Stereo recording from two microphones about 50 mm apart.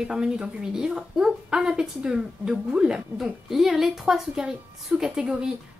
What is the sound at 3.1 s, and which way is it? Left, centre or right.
A woman's voice, centre.